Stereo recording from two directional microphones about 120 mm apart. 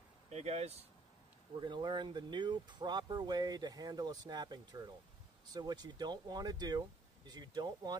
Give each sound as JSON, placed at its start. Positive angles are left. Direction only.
{"t": 0.3, "sound": "speech", "side_deg": -65}
{"t": 1.6, "sound": "speech", "side_deg": -40}